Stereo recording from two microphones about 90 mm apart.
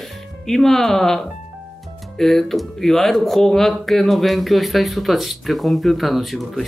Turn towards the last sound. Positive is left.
turn(degrees=0)  # may be behind; listen again after turning